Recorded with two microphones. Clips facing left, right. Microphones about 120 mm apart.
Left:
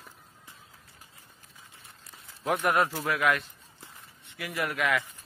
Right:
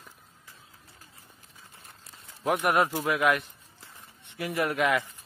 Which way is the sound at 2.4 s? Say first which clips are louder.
Right 1 dB; 20° right (ahead or behind).